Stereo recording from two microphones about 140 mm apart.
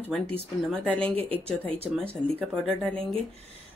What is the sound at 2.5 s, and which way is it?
Speech, 5° left (ahead or behind).